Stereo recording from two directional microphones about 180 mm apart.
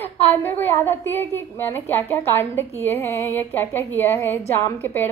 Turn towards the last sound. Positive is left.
turn(degrees=10)  # may be behind; listen again after turning